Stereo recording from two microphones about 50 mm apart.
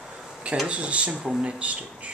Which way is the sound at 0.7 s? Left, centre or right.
Right.